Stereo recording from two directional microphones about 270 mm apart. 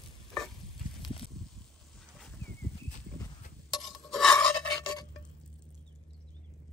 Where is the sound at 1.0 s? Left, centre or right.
Centre.